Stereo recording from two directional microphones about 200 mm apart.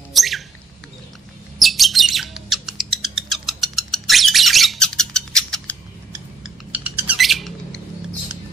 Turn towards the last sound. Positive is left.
turn(degrees=0)  # may be behind; listen again after turning